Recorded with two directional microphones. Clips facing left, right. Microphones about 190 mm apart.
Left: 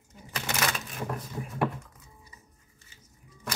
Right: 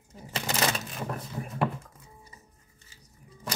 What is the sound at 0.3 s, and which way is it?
Typewriter, 30° right (ahead or behind).